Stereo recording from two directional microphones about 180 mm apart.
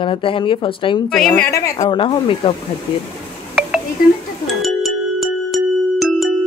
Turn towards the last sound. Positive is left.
turn(degrees=0)  # may be behind; listen again after turning